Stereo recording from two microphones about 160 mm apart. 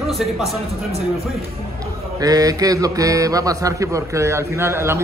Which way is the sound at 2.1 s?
20° right (ahead or behind).